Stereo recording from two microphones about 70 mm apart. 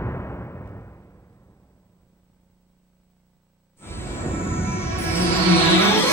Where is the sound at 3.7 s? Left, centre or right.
Left.